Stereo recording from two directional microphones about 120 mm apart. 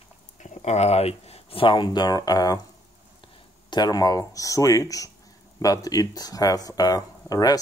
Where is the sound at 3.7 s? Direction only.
35° left (ahead or behind).